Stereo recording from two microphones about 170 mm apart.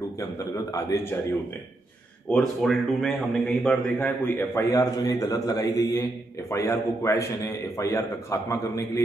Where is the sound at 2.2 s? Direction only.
Centre (ahead or behind).